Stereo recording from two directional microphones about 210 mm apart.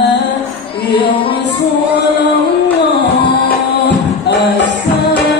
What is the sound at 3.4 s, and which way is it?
Music, 55° left (ahead or behind).